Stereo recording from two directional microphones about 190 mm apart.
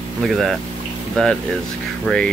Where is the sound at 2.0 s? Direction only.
5° left (ahead or behind).